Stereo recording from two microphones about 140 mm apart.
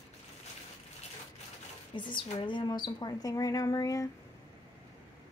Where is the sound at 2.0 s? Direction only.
35° left (ahead or behind).